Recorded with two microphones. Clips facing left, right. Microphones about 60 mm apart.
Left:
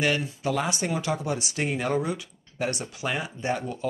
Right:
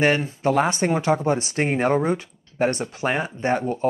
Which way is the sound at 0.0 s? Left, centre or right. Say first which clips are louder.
Right 6 dB; right.